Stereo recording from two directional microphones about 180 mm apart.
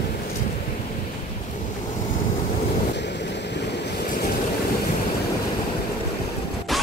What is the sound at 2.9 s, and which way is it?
Boat, 75° left (ahead or behind).